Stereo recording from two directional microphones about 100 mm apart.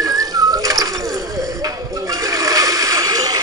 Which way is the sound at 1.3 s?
35° right (ahead or behind).